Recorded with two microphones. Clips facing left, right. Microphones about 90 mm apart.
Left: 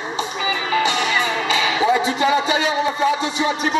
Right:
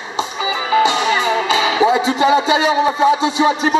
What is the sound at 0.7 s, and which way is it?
Music, 30° right (ahead or behind).